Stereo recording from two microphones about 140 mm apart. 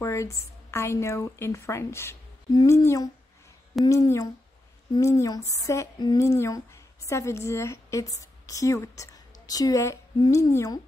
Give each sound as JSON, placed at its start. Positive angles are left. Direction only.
{"t": 0.0, "sound": "speech", "side_deg": 20}